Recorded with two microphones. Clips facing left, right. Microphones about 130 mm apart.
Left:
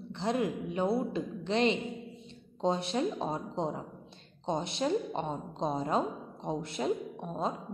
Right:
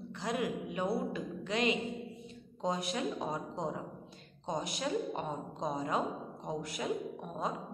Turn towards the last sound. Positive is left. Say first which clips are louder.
# left 3 dB
turn(degrees=25)  # may be behind; listen again after turning